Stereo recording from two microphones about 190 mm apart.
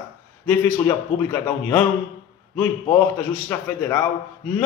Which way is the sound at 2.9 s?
10° left (ahead or behind).